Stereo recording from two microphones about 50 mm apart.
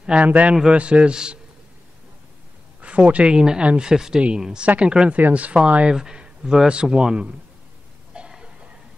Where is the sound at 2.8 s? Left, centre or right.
Right.